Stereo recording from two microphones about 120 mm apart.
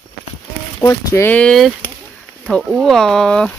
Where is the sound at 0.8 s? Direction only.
25° left (ahead or behind).